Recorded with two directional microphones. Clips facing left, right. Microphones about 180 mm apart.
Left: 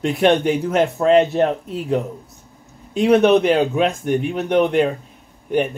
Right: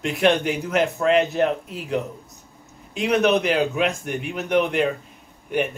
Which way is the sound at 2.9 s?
30° left (ahead or behind).